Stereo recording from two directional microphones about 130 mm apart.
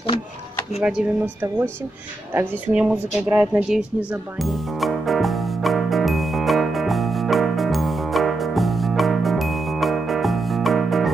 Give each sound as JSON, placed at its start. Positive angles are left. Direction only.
{"t": 0.7, "sound": "speech", "side_deg": -5}
{"t": 1.2, "sound": "speech", "side_deg": -15}
{"t": 2.7, "sound": "speech", "side_deg": -10}
{"t": 4.4, "sound": "music", "side_deg": 0}